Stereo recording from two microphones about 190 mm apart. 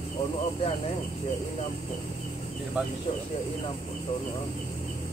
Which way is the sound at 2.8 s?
5° right (ahead or behind).